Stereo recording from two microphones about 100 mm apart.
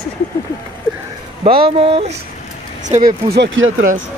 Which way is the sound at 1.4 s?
80° right.